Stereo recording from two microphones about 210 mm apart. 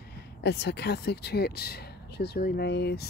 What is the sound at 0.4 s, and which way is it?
Speech, 55° left (ahead or behind).